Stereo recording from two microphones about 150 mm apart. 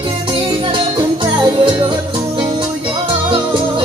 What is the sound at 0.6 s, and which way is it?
Music, 30° right (ahead or behind).